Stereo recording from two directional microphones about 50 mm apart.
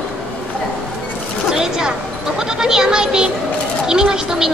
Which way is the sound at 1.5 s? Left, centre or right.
Centre.